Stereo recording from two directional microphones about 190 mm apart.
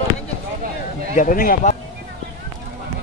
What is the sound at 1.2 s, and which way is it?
Speech, 45° left (ahead or behind).